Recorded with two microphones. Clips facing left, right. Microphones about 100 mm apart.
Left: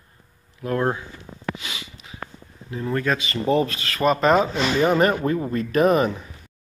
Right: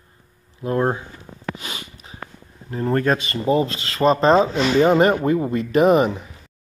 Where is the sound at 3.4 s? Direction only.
25° right (ahead or behind).